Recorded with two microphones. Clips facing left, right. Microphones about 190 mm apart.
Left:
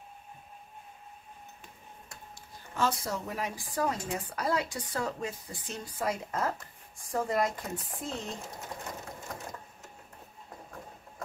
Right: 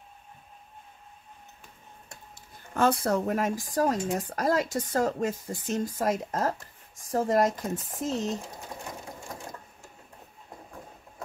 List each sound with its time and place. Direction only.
2.7 s speech: 55° right (ahead or behind)